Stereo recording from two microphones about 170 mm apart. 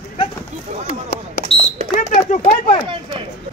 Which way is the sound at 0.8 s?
60° left (ahead or behind).